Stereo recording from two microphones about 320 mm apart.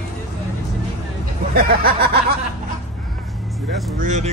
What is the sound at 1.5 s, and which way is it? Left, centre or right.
Speech, right.